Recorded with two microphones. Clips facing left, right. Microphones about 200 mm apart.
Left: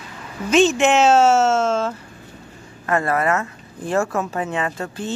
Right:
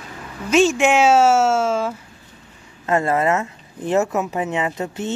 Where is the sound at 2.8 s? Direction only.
20° right (ahead or behind).